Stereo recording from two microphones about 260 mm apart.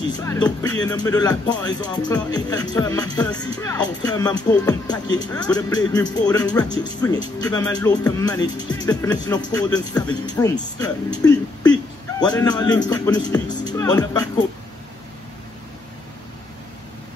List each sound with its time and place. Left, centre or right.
0.2 s speech: centre